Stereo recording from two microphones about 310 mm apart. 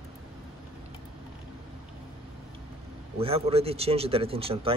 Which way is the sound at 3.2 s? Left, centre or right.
Centre.